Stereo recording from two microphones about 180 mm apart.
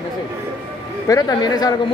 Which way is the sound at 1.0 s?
20° left (ahead or behind).